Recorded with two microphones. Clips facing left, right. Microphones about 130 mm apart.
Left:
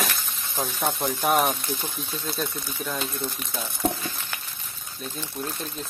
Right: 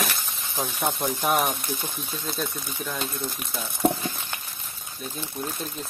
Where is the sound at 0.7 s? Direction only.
15° right (ahead or behind).